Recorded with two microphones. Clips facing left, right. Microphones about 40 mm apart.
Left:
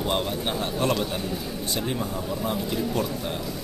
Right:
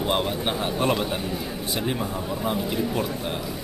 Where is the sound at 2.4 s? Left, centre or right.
Centre.